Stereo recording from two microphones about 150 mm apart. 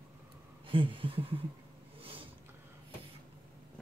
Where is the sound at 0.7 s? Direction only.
35° right (ahead or behind).